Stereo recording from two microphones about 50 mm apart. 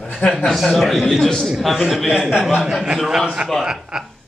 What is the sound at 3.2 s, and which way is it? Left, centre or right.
Speech, centre.